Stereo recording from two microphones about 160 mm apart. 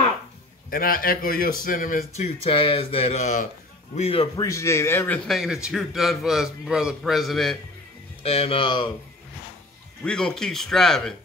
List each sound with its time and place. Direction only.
0.7 s speech: 65° left (ahead or behind); by 4.3 s 40° left (ahead or behind)
4.4 s speech: 20° left (ahead or behind)
5.3 s a man's voice: 5° right (ahead or behind)
8.2 s speech: 40° left (ahead or behind)
10.0 s a man's voice: 5° left (ahead or behind)